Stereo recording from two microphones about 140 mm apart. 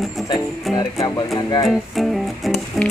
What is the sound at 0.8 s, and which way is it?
Music, 30° left (ahead or behind).